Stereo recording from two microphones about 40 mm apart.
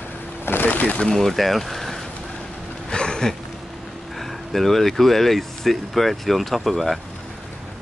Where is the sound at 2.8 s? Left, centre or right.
Left.